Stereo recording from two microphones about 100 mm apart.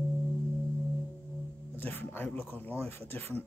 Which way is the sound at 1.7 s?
20° left (ahead or behind).